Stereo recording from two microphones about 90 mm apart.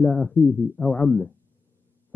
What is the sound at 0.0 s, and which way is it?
Speech, 10° left (ahead or behind).